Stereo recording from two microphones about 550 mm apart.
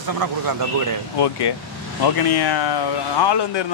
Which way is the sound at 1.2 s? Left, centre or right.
Left.